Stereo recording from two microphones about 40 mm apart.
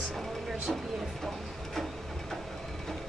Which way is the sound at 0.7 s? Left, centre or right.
Centre.